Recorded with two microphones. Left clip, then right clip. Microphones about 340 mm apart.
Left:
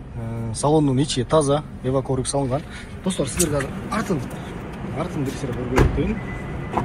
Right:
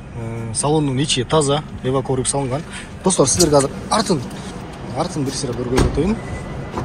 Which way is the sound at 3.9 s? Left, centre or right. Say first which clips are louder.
Right 7 dB; centre.